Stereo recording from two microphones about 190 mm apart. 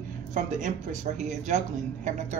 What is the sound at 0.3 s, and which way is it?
A man's voice, 40° right (ahead or behind).